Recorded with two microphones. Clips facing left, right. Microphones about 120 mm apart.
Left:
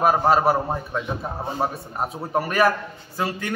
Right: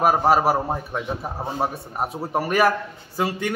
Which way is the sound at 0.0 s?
10° right (ahead or behind).